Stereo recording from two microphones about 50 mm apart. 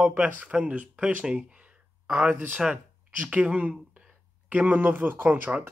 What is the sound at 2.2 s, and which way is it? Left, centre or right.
Speech, right.